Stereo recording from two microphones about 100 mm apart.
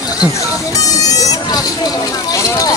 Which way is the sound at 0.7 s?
35° left (ahead or behind).